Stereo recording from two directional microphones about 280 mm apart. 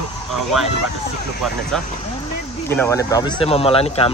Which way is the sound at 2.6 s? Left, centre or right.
Centre.